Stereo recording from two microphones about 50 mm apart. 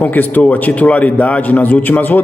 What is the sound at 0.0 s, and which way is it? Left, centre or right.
A man's voice, left.